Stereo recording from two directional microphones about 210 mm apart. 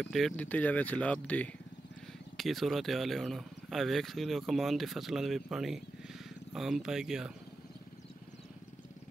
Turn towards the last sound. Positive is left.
turn(degrees=-5)  # may be behind; listen again after turning